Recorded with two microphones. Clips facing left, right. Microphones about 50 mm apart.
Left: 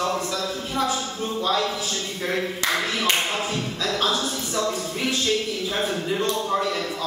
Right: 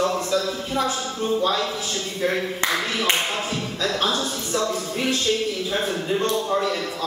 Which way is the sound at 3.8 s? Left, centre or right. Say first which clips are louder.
Right 1 dB; centre.